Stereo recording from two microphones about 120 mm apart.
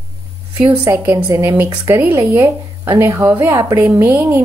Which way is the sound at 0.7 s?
25° right (ahead or behind).